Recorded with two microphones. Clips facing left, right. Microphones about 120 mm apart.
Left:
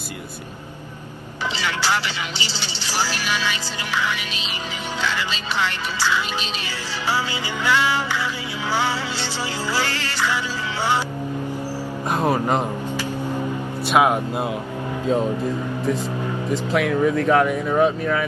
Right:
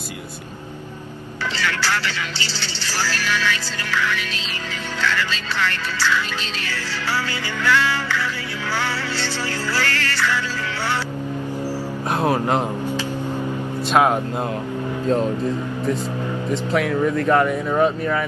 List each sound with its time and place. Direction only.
1.6 s speech: 15° left (ahead or behind)
7.6 s music: 15° left (ahead or behind)
9.8 s speech: 15° left (ahead or behind)
12.1 s speech: centre (ahead or behind)
13.8 s speech: 5° left (ahead or behind)
16.7 s speech: centre (ahead or behind)